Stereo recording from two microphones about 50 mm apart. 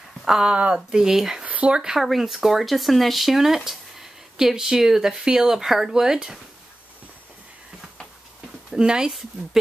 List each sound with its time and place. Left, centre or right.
0.2 s speech: centre
0.5 s speech: right
0.7 s speech: centre
1.4 s a sound: right
1.8 s speech: centre
8.6 s speech: centre